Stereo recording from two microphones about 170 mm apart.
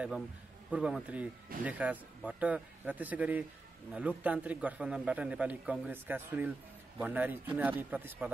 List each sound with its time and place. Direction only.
0.7 s speech: 5° right (ahead or behind)